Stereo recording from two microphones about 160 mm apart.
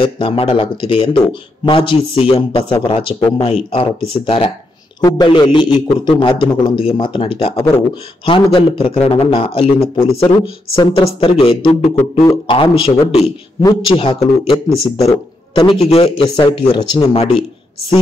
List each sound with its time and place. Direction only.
0.0 s speech: 35° left (ahead or behind)
13.6 s a man's voice: 25° left (ahead or behind)
13.9 s speech: 35° left (ahead or behind)